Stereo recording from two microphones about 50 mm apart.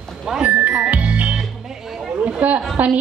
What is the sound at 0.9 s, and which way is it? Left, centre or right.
Music, right.